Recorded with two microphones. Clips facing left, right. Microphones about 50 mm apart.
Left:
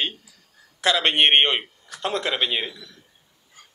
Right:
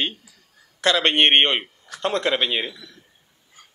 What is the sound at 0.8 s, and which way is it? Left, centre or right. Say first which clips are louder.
A man's voice: right 1 dB; centre.